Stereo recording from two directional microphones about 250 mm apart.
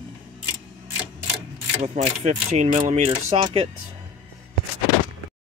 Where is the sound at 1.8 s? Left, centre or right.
Right.